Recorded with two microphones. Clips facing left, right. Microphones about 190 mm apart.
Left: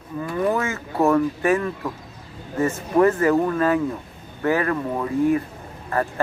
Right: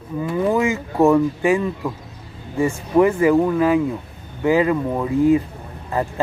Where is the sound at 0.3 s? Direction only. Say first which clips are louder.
Right 4 dB; 20° right (ahead or behind).